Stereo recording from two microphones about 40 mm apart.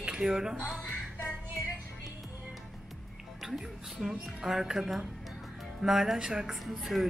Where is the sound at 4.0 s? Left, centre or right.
Centre.